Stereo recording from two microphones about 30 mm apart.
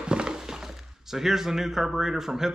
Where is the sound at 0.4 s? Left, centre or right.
Centre.